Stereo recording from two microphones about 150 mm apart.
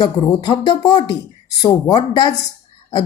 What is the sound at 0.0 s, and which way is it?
Speech, 30° left (ahead or behind).